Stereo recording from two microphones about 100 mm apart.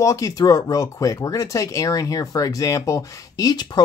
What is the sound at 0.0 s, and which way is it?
Speech, 35° left (ahead or behind).